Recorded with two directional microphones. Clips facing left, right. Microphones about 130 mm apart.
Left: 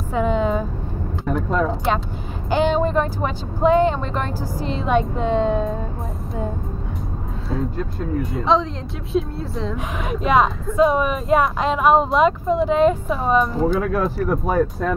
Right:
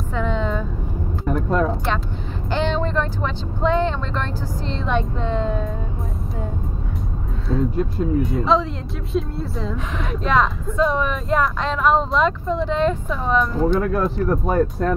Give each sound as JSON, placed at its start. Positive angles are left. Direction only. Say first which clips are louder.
{"t": 0.1, "sound": "a sound", "louder": "left 4 dB", "side_deg": 10}
{"t": 1.2, "sound": "vehicle", "louder": "right 1 dB", "side_deg": 0}
{"t": 2.5, "sound": "vehicle", "louder": "left 4 dB", "side_deg": 10}
{"t": 5.3, "sound": "music", "louder": "left 5 dB", "side_deg": 20}
{"t": 7.7, "sound": "speech", "louder": "right 4 dB", "side_deg": 0}
{"t": 10.0, "sound": "speech", "louder": "left 2 dB", "side_deg": 10}